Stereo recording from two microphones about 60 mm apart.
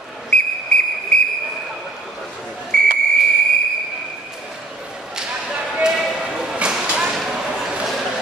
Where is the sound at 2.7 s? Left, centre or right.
Centre.